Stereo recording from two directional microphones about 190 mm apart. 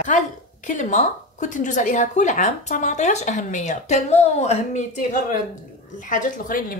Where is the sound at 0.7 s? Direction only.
40° left (ahead or behind).